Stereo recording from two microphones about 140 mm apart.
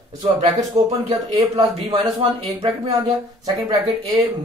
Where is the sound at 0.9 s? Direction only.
45° right (ahead or behind).